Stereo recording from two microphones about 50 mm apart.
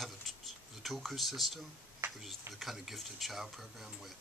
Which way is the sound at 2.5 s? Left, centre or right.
Centre.